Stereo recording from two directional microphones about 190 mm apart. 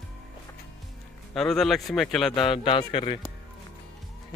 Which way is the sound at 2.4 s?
25° left (ahead or behind).